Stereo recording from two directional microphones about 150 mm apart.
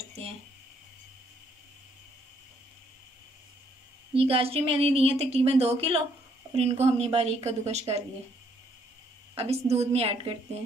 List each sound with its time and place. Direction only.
4.1 s a woman's voice: 40° right (ahead or behind)
9.3 s a woman's voice: 40° right (ahead or behind)